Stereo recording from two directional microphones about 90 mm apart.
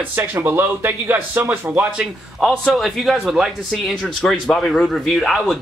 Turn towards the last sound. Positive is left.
turn(degrees=0)  # may be behind; listen again after turning